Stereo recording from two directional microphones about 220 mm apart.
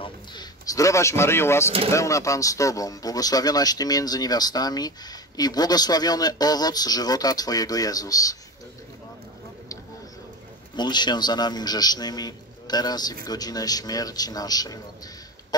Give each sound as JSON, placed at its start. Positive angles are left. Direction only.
{"t": 0.0, "sound": "speech", "side_deg": 20}
{"t": 10.8, "sound": "speech", "side_deg": 20}